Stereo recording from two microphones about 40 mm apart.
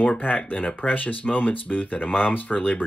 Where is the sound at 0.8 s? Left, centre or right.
Left.